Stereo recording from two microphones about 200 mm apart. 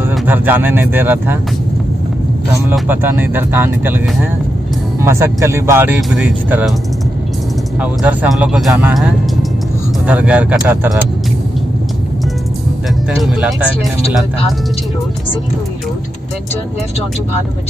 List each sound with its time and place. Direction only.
0.3 s speech: 10° right (ahead or behind)
2.7 s speech: 10° right (ahead or behind)
7.8 s speech: 5° right (ahead or behind)
13.2 s speech: centre (ahead or behind)